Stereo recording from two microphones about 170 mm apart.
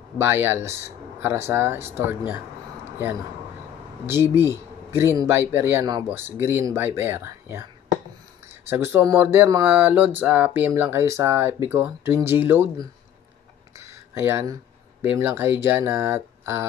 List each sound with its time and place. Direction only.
0.2 s speech: 15° right (ahead or behind)
4.0 s speech: 15° right (ahead or behind)
13.7 s a sound: 15° right (ahead or behind)
15.0 s speech: 10° right (ahead or behind)